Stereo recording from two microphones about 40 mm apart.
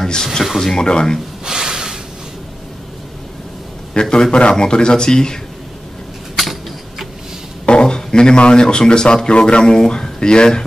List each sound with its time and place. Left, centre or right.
0.0 s speech: centre
0.7 s speech: centre
1.4 s a sound: centre
3.9 s speech: centre
6.3 s a sound: centre
7.6 s speech: left